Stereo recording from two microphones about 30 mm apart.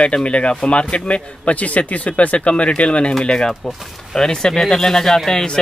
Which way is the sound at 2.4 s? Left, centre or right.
Left.